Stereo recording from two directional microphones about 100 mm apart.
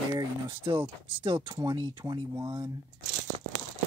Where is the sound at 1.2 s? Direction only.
50° right (ahead or behind).